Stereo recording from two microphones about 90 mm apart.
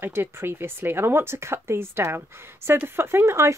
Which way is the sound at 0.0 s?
25° right (ahead or behind).